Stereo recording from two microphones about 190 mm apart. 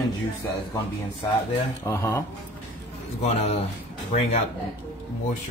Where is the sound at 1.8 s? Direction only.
15° left (ahead or behind).